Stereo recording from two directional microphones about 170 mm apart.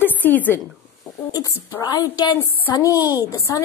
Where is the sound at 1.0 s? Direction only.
20° left (ahead or behind).